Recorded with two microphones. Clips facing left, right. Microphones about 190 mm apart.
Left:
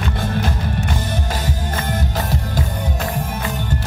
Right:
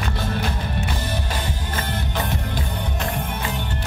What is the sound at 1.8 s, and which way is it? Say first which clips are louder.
Music: left 2 dB; 45° left (ahead or behind).